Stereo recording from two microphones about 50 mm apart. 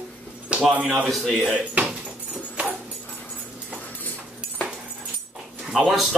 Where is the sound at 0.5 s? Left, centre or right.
Right.